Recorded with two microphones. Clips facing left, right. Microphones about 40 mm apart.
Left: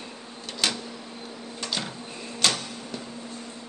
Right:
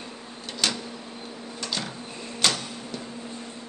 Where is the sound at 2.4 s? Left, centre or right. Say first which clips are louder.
Even; centre.